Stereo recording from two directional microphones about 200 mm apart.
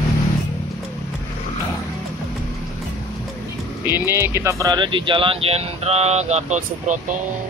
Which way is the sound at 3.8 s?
10° right (ahead or behind).